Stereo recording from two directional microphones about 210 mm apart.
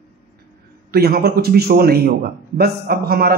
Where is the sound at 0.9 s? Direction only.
50° right (ahead or behind).